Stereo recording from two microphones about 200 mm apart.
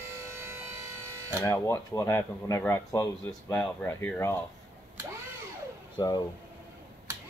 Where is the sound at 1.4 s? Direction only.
15° left (ahead or behind).